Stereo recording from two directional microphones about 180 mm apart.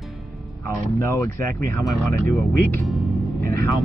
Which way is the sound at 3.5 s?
15° left (ahead or behind).